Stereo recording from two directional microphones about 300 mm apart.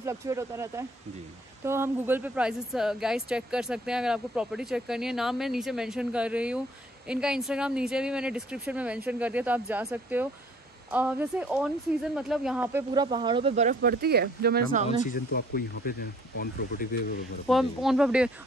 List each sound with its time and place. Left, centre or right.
0.0 s a woman's voice: centre
13.7 s speech: right
14.9 s speech: left
17.5 s a woman's voice: centre